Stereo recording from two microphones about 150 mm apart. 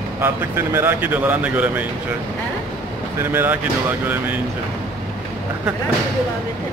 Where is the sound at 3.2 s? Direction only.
15° right (ahead or behind).